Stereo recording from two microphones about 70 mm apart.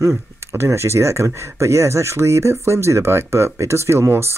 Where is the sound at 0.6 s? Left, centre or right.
Right.